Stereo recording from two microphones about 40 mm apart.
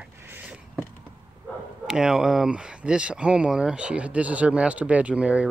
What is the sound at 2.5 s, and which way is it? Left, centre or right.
Speech, right.